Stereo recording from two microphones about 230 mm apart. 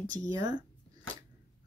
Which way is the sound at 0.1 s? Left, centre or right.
Centre.